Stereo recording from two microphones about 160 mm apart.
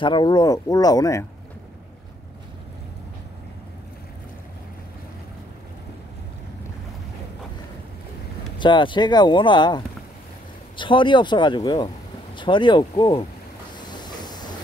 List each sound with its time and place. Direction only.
0.0 s speech: 30° left (ahead or behind)
8.5 s speech: 30° left (ahead or behind)
13.7 s train: 25° left (ahead or behind)